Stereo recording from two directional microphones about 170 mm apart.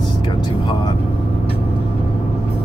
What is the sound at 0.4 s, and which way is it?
Vehicle, 25° left (ahead or behind).